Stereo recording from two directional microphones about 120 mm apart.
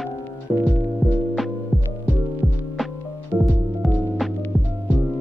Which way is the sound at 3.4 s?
Centre (ahead or behind).